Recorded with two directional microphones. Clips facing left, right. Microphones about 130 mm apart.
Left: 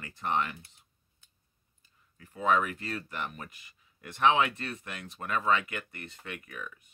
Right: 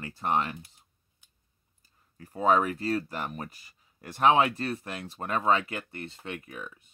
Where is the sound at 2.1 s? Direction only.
35° right (ahead or behind).